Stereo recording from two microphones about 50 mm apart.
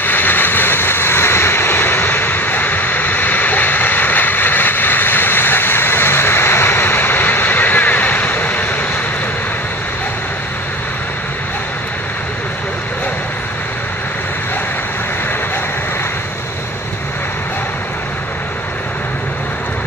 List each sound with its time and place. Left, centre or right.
0.0 s vehicle: left